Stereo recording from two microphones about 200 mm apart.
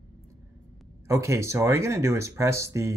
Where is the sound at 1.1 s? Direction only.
15° right (ahead or behind).